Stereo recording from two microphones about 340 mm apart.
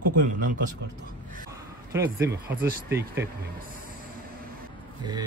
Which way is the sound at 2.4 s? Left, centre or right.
Right.